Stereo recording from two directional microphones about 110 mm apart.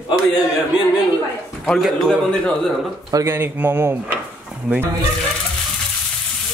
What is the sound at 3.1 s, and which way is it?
Speech, 20° right (ahead or behind).